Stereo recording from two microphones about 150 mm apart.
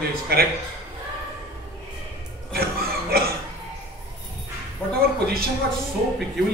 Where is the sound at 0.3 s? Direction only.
90° right.